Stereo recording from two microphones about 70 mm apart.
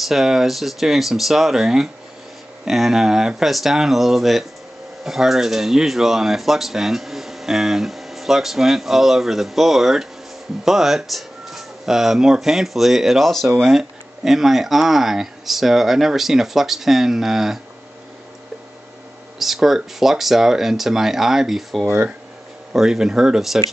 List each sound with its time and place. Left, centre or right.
0.0 s speech: centre
19.3 s speech: centre
21.8 s speech: right
22.8 s speech: centre